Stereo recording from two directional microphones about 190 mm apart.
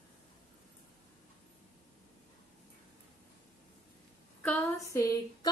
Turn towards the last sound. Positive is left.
turn(degrees=15)  # may be behind; listen again after turning